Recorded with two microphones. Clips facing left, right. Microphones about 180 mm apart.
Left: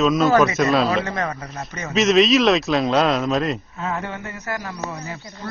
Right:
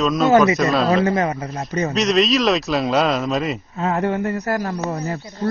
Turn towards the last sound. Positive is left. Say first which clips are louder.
# right 6 dB
turn(degrees=-40)  # may be behind; listen again after turning